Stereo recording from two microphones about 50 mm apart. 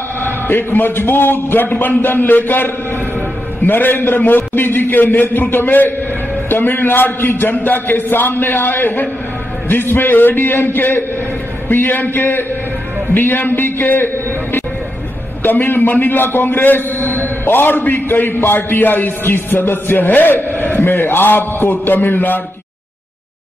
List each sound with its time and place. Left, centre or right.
0.2 s a man's voice: left